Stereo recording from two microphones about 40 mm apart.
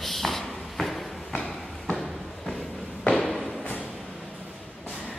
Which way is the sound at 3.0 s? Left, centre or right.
Centre.